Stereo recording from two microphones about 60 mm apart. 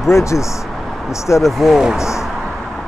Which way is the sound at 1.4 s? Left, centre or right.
Centre.